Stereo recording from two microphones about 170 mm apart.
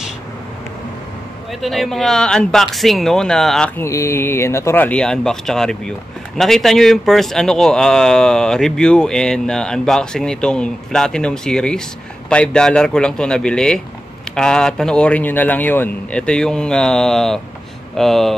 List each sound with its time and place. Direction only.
1.6 s speech: centre (ahead or behind)
3.8 s speech: 15° left (ahead or behind)